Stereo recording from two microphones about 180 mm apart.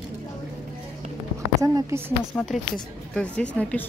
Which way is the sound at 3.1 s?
5° left (ahead or behind).